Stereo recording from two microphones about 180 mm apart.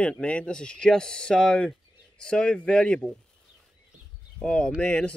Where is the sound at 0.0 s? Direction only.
5° left (ahead or behind).